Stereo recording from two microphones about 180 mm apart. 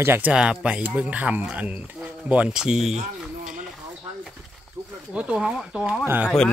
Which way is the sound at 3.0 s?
45° right (ahead or behind).